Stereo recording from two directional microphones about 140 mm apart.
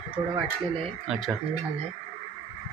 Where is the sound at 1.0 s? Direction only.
5° right (ahead or behind).